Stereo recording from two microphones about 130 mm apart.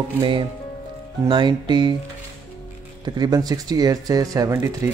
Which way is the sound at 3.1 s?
30° right (ahead or behind).